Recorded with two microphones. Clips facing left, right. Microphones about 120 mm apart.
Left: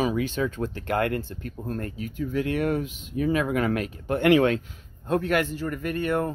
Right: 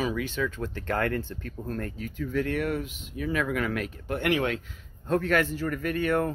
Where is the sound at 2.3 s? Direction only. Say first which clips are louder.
Left 3 dB; 25° left (ahead or behind).